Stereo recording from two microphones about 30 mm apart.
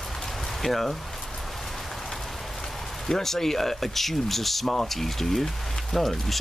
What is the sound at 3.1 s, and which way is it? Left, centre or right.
Speech, centre.